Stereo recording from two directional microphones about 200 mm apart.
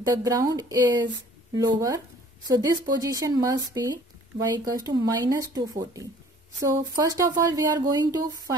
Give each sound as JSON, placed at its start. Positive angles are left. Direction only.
{"t": 0.0, "sound": "speech", "side_deg": -20}